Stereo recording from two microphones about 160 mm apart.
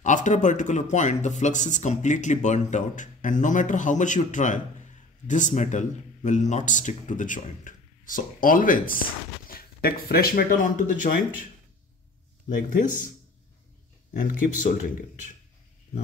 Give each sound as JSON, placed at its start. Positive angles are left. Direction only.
{"t": 0.0, "sound": "speech", "side_deg": 50}
{"t": 9.5, "sound": "speech", "side_deg": 70}
{"t": 12.4, "sound": "speech", "side_deg": 55}
{"t": 14.4, "sound": "speech", "side_deg": 55}